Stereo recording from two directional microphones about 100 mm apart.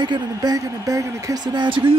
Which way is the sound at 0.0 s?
45° right (ahead or behind).